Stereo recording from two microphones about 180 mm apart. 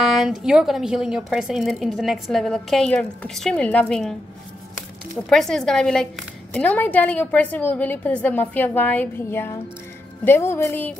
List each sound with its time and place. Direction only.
0.0 s a woman's voice: centre (ahead or behind)